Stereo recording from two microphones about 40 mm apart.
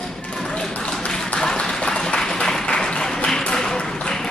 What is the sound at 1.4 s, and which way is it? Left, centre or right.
Applause, centre.